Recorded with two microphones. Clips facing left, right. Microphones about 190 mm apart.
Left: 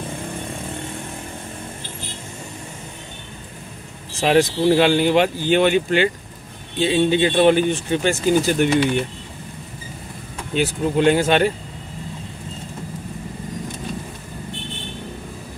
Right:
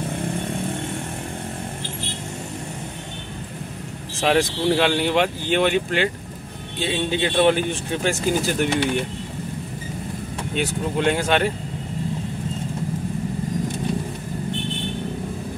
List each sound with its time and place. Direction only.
4.2 s speech: centre (ahead or behind)
10.5 s speech: centre (ahead or behind)